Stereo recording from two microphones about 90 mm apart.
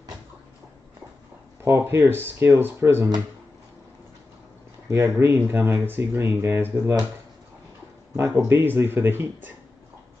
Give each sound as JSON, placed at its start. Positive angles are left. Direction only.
{"t": 1.6, "sound": "speech", "side_deg": -30}
{"t": 4.8, "sound": "speech", "side_deg": -35}
{"t": 5.3, "sound": "speech", "side_deg": -25}
{"t": 8.2, "sound": "speech", "side_deg": -30}